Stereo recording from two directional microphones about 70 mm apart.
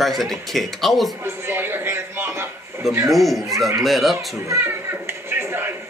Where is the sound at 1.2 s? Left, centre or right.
Right.